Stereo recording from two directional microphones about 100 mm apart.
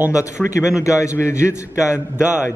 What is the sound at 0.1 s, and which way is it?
A man's voice, 30° left (ahead or behind).